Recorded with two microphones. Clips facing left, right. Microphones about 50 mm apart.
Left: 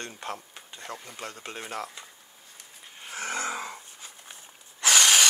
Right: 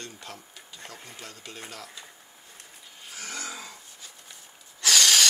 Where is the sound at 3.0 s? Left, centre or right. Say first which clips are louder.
Left 6 dB; left.